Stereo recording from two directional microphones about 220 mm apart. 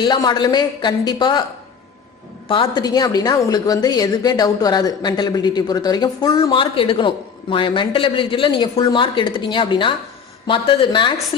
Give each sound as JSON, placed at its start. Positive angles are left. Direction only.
{"t": 0.0, "sound": "a woman's voice", "side_deg": 20}
{"t": 2.4, "sound": "a woman's voice", "side_deg": 25}